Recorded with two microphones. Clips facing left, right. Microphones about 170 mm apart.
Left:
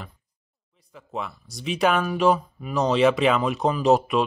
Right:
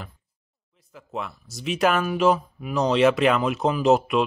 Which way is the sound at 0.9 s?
Centre (ahead or behind).